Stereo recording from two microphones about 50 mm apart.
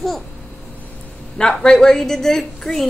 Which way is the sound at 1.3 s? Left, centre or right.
Centre.